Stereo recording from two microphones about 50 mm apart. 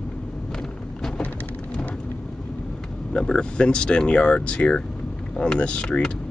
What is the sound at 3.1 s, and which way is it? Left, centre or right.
Speech, centre.